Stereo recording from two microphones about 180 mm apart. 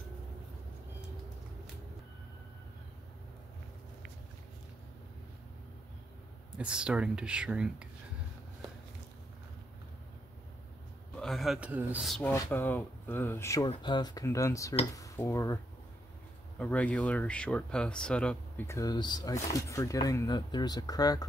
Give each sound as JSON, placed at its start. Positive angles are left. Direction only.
{"t": 6.6, "sound": "speech", "side_deg": -5}
{"t": 11.1, "sound": "speech", "side_deg": 0}
{"t": 12.2, "sound": "speech", "side_deg": 15}